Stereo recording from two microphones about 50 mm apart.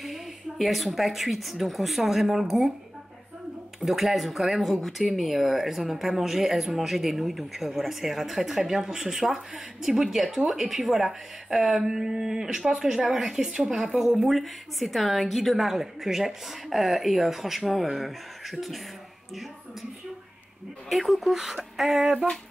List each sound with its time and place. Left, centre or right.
0.0 s speech: centre
3.8 s speech: centre
20.9 s speech: centre